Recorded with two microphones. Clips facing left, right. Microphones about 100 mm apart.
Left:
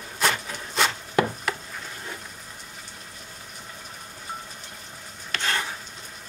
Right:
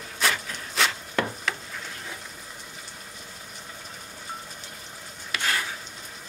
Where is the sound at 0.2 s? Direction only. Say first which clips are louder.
Left 2 dB; centre (ahead or behind).